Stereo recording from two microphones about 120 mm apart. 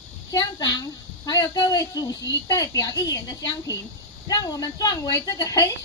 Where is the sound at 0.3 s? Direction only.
35° left (ahead or behind).